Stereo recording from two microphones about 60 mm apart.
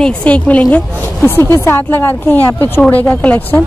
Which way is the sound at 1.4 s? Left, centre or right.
Left.